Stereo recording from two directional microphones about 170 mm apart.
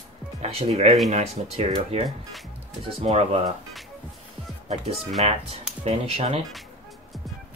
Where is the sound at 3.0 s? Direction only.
40° right (ahead or behind).